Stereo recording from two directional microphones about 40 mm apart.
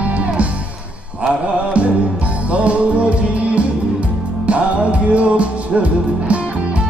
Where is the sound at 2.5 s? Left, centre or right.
Right.